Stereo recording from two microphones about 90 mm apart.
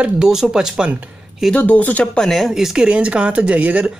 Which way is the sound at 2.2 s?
Centre (ahead or behind).